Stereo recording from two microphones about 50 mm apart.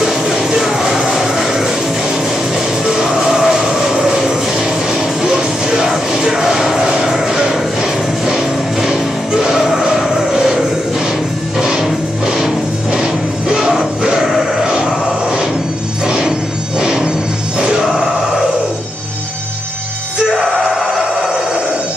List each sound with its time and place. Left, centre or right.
0.0 s music: centre
2.8 s music: centre
8.8 s music: centre
11.6 s music: centre
20.3 s music: centre
20.8 s a sound: centre